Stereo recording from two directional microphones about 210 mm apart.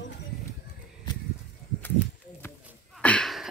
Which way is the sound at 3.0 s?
5° left (ahead or behind).